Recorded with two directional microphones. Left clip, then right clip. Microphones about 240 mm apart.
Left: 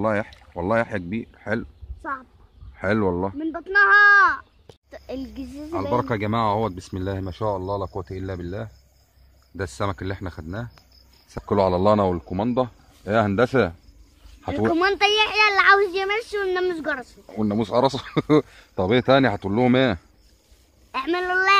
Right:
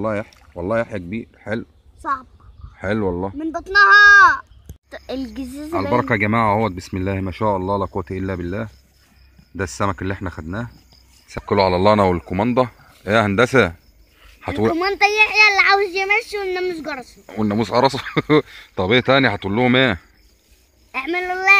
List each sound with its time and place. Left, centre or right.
0.0 s speech: centre
2.0 s a child's voice: right
2.7 s speech: centre
3.3 s speech: right
4.8 s speech: centre
5.7 s speech: centre
14.8 s speech: centre